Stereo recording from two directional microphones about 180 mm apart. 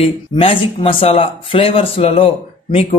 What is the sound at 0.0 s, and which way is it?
Speech, 30° left (ahead or behind).